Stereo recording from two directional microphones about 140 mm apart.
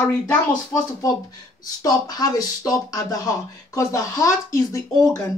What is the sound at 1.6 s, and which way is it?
Speech, 25° left (ahead or behind).